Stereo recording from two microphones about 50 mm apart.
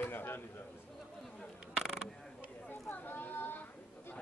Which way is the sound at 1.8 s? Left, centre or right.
Centre.